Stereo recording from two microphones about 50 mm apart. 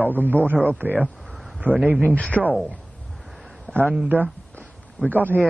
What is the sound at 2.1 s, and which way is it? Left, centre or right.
Speech, left.